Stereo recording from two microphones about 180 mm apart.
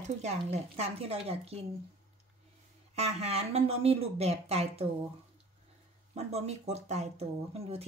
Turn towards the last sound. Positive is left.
turn(degrees=-35)  # may be behind; listen again after turning